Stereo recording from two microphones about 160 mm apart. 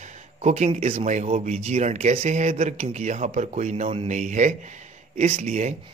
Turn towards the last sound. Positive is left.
turn(degrees=-45)  # may be behind; listen again after turning